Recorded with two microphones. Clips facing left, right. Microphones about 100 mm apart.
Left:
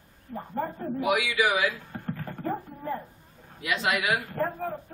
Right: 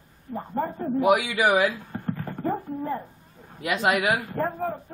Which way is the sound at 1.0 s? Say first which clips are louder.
Right 4 dB; 45° right (ahead or behind).